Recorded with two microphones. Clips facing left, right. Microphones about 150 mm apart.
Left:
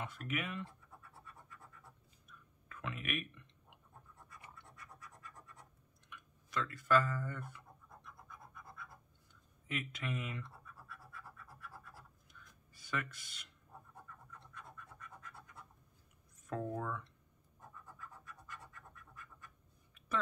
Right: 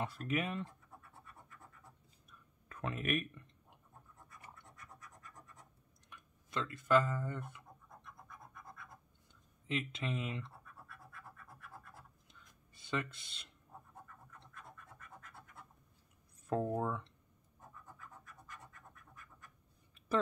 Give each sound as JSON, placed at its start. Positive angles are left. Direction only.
{"t": 0.0, "sound": "speech", "side_deg": -35}
{"t": 2.2, "sound": "clicking", "side_deg": -35}
{"t": 6.0, "sound": "a sound", "side_deg": -35}
{"t": 6.6, "sound": "speech", "side_deg": -20}
{"t": 8.0, "sound": "scratch", "side_deg": 0}
{"t": 9.7, "sound": "speech", "side_deg": -25}
{"t": 12.3, "sound": "a sound", "side_deg": -25}
{"t": 16.4, "sound": "speech", "side_deg": -30}